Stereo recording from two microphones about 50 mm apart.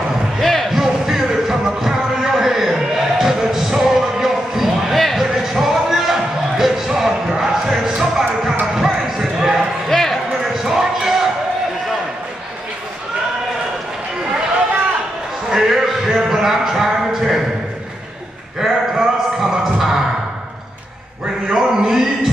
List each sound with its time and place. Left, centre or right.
0.4 s basketball bounce: centre
0.7 s music: centre
8.7 s basketball bounce: centre
9.8 s basketball bounce: centre
10.4 s basketball bounce: centre
15.5 s a sound: centre
18.6 s a sound: centre
19.5 s music: centre
21.5 s a sound: centre